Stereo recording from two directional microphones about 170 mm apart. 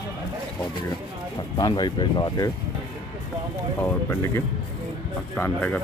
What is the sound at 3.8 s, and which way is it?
Speech, 15° left (ahead or behind).